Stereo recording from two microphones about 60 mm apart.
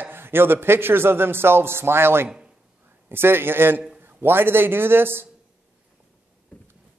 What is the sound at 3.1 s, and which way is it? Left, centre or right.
Speech, right.